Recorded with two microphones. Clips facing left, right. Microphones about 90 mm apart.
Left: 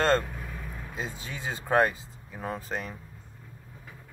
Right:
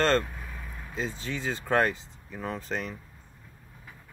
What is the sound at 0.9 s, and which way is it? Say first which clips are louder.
Speech: right 5 dB; 15° left (ahead or behind).